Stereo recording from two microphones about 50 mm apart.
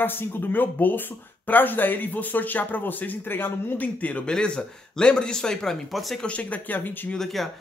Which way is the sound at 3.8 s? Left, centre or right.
Left.